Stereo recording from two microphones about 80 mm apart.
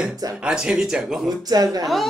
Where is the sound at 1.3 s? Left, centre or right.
Right.